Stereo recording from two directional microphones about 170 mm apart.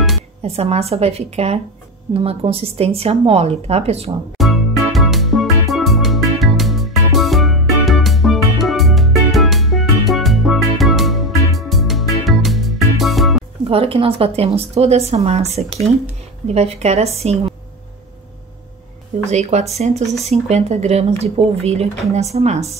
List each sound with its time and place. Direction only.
0.4 s speech: 35° right (ahead or behind)
4.4 s music: centre (ahead or behind)
13.7 s speech: 35° right (ahead or behind)
19.3 s speech: 40° right (ahead or behind)